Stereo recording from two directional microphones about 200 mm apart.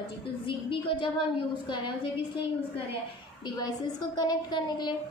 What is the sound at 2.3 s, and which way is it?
A woman's voice, 25° left (ahead or behind).